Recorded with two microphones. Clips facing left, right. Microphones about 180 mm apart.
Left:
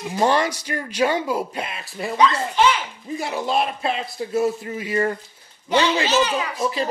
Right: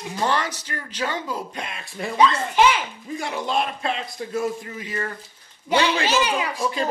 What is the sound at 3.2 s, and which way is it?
Speech, 5° left (ahead or behind).